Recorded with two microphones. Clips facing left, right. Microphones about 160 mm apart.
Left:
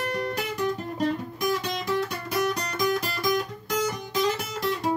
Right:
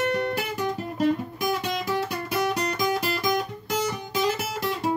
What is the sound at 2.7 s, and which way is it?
Music, 5° right (ahead or behind).